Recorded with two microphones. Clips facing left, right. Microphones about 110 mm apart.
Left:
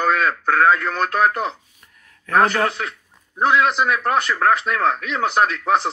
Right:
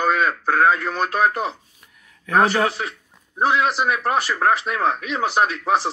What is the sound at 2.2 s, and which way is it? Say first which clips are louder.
Speech: even; 5° right (ahead or behind).